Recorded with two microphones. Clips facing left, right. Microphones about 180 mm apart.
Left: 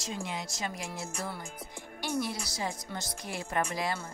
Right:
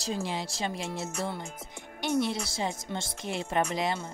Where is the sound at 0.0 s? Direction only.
30° right (ahead or behind).